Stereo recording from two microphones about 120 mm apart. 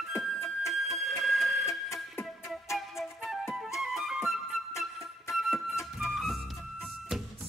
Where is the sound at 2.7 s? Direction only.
Centre (ahead or behind).